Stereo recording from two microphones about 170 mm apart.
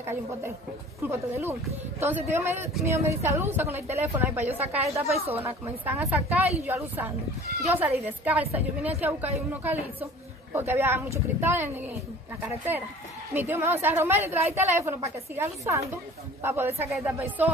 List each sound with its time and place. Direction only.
0.0 s a woman's voice: 15° right (ahead or behind)
5.1 s a woman's voice: 35° right (ahead or behind)
5.4 s a woman's voice: 10° right (ahead or behind)
13.3 s a woman's voice: 15° right (ahead or behind)